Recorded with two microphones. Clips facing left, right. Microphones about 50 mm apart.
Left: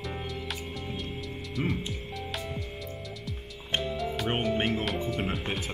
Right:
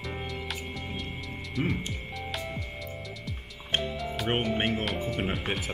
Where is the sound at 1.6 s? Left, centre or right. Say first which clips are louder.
Right 1 dB; centre.